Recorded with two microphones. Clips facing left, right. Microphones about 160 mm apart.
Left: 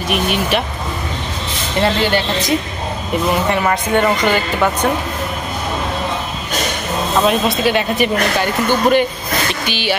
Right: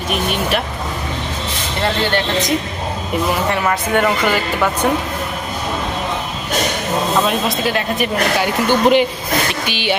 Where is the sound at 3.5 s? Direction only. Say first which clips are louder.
Left 1 dB; centre (ahead or behind).